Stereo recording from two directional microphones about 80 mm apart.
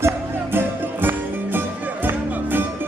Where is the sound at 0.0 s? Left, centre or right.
Right.